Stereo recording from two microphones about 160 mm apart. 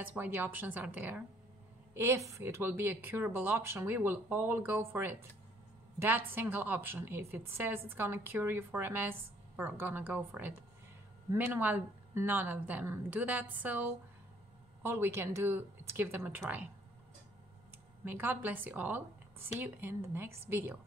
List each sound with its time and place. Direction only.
0.0 s a woman's voice: 10° right (ahead or behind)
18.0 s a woman's voice: 10° right (ahead or behind)